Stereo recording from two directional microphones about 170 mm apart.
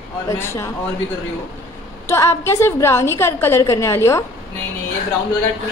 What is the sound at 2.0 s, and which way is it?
A woman's voice, 15° left (ahead or behind).